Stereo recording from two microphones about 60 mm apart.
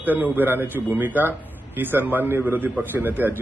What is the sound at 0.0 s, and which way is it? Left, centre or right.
A man's voice, right.